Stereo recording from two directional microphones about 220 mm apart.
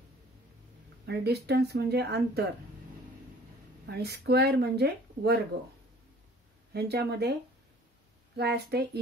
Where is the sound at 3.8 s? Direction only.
45° right (ahead or behind).